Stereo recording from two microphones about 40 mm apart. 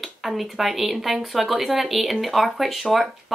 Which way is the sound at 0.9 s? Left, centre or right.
Centre.